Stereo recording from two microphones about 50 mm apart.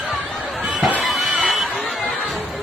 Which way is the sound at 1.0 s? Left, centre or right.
Centre.